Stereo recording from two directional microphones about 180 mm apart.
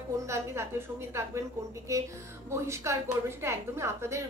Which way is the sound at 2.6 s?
15° right (ahead or behind).